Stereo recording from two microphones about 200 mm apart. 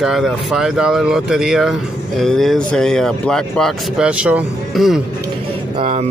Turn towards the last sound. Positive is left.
turn(degrees=-35)  # may be behind; listen again after turning